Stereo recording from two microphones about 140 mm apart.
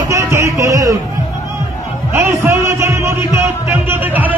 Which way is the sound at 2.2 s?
20° right (ahead or behind).